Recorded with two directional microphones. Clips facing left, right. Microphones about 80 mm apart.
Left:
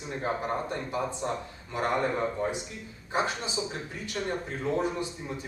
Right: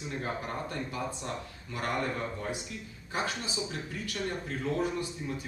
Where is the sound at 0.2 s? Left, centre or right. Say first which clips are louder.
Left 7 dB; left.